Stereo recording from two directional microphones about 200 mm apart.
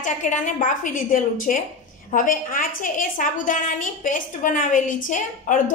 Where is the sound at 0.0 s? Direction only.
40° left (ahead or behind).